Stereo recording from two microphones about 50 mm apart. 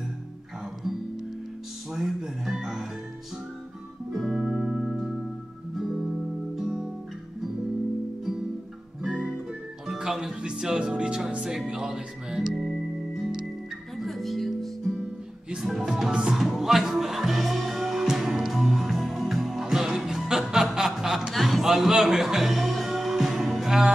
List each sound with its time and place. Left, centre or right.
0.8 s music: centre
4.1 s music: centre
9.8 s speech: centre
12.6 s music: centre
15.5 s music: centre
16.3 s music: centre